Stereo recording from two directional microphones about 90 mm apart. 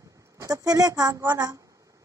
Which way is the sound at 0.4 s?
40° right (ahead or behind).